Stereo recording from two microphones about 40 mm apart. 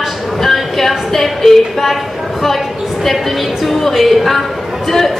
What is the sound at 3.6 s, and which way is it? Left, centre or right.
A woman's voice, centre.